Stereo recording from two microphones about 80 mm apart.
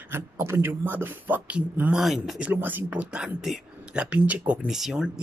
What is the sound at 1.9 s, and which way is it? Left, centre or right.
Speech, centre.